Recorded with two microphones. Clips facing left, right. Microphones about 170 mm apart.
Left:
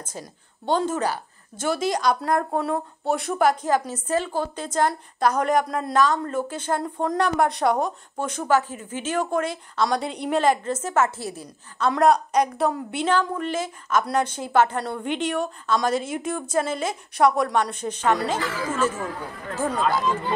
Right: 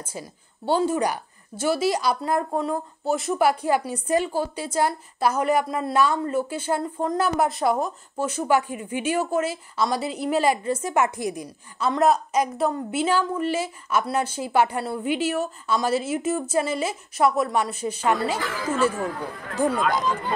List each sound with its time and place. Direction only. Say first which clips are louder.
0.0 s a woman's voice: right 1 dB; 10° right (ahead or behind)
11.9 s a woman's voice: left 1 dB; centre (ahead or behind)